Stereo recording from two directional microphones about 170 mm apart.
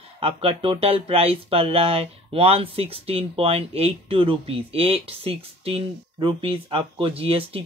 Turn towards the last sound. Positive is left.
turn(degrees=-35)  # may be behind; listen again after turning